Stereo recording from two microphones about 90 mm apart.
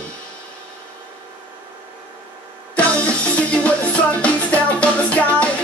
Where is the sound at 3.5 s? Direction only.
15° left (ahead or behind).